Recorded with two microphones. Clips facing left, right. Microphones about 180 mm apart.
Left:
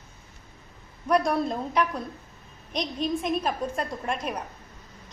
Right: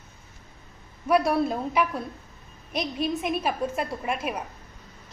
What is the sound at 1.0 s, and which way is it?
A woman's voice, 5° right (ahead or behind).